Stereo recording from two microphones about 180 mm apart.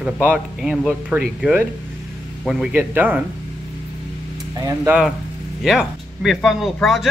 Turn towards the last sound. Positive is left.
turn(degrees=0)  # may be behind; listen again after turning